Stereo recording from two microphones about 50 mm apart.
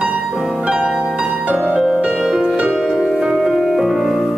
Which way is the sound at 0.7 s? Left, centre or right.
Centre.